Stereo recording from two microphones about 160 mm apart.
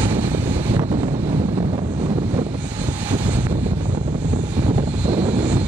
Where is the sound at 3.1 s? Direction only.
30° right (ahead or behind).